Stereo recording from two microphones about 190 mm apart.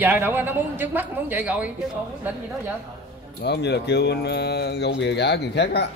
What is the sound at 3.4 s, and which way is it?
Speech, 60° left (ahead or behind).